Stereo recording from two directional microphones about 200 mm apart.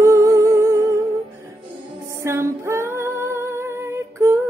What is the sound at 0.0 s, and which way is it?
Music, 15° right (ahead or behind).